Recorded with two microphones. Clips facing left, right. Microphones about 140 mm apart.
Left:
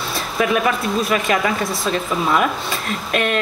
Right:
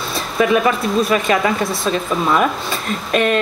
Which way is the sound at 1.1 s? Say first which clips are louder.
Right 2 dB; 30° right (ahead or behind).